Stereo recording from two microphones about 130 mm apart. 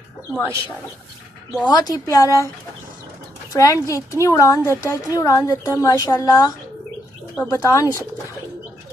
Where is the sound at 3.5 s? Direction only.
25° left (ahead or behind).